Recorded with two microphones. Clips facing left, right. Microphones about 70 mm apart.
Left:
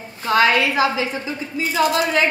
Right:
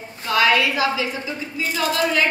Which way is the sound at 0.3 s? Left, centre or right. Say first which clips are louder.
Left 2 dB; left.